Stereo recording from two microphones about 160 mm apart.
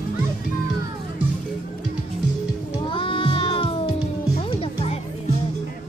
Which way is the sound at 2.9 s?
30° left (ahead or behind).